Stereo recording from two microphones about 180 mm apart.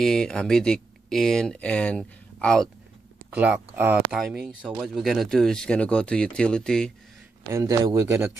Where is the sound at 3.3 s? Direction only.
10° right (ahead or behind).